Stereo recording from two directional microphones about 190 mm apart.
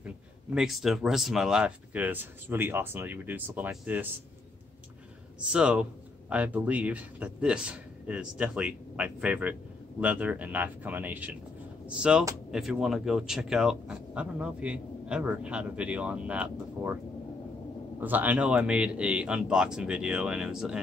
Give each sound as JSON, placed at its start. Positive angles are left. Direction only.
{"t": 0.6, "sound": "a man's voice", "side_deg": 0}
{"t": 5.5, "sound": "a man's voice", "side_deg": -5}
{"t": 18.0, "sound": "speech", "side_deg": -10}